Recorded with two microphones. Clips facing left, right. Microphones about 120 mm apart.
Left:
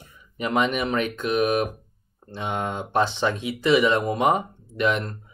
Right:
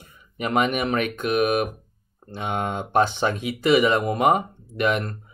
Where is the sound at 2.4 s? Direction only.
55° right (ahead or behind).